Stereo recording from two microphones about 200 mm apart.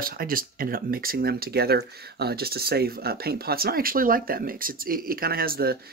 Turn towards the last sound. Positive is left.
turn(degrees=-50)  # may be behind; listen again after turning